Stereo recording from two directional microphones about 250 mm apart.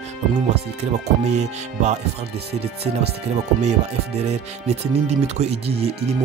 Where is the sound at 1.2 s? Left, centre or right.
Right.